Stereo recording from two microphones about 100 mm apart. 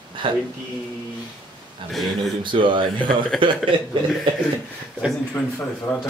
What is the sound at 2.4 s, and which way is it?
Speech, 55° right (ahead or behind).